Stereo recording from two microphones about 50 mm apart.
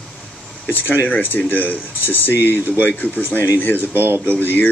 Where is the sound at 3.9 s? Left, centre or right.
Right.